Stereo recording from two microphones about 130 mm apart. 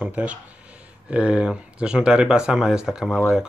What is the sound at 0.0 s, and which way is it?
A man's voice, 10° right (ahead or behind).